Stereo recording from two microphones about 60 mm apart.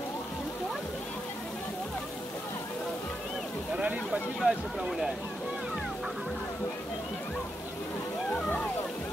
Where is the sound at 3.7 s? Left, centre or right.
Centre.